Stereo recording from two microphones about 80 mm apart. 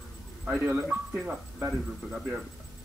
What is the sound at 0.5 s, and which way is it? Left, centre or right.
Speech, right.